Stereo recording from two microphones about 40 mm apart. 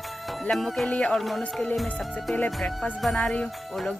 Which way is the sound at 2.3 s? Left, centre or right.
Left.